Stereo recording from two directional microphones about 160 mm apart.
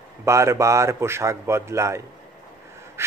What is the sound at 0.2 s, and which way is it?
Speech, 20° right (ahead or behind).